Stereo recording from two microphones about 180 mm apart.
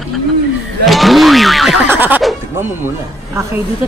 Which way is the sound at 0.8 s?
Centre (ahead or behind).